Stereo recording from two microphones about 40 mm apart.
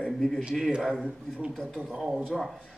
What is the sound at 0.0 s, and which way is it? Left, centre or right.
Speech, centre.